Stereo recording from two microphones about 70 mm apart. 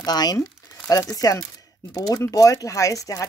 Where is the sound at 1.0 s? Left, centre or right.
Left.